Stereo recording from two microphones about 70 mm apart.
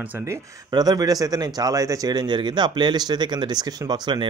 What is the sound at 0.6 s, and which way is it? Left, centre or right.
Speech, right.